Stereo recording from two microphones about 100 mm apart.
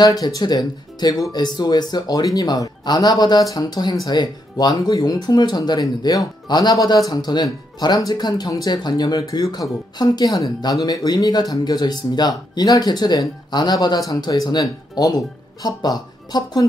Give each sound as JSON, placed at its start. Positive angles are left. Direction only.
{"t": 0.0, "sound": "speech", "side_deg": 40}